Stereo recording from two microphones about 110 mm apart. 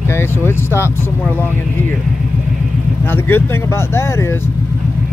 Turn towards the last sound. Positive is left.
turn(degrees=20)  # may be behind; listen again after turning